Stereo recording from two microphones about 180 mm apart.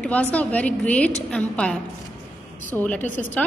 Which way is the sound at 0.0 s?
5° left (ahead or behind).